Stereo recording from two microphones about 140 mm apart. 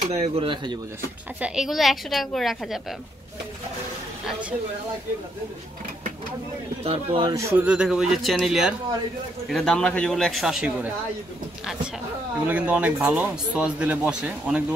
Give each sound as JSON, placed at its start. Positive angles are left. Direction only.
{"t": 0.0, "sound": "speech", "side_deg": -50}
{"t": 1.4, "sound": "a woman's voice", "side_deg": -5}
{"t": 6.8, "sound": "speech", "side_deg": -40}
{"t": 7.3, "sound": "speech", "side_deg": -20}
{"t": 7.6, "sound": "a woman's voice", "side_deg": -5}
{"t": 12.4, "sound": "speech", "side_deg": -10}